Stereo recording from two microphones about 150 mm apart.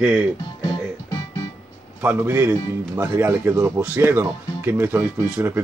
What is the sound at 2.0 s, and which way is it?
Speech, 15° right (ahead or behind).